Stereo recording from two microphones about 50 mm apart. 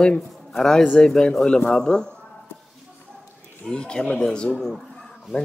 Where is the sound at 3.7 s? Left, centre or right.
Centre.